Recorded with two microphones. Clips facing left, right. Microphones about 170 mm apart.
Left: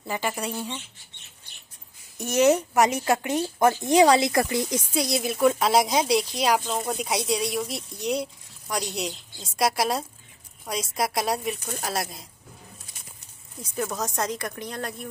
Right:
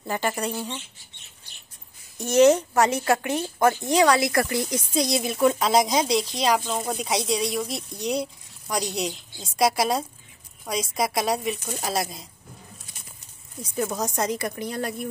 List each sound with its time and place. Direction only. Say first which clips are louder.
0.0 s speech: right 2 dB; centre (ahead or behind)
2.1 s speech: right 3 dB; 10° left (ahead or behind)
4.9 s speech: right 3 dB; 5° left (ahead or behind)
13.8 s speech: right 2 dB; 15° right (ahead or behind)
14.1 s speech: right 3 dB; 5° right (ahead or behind)